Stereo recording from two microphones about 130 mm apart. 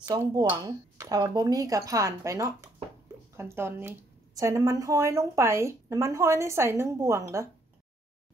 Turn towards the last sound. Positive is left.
turn(degrees=-25)  # may be behind; listen again after turning